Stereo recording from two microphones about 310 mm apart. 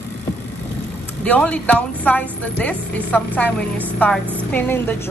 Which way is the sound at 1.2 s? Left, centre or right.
Centre.